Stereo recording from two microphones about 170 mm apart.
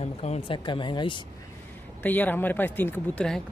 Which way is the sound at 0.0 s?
40° left (ahead or behind).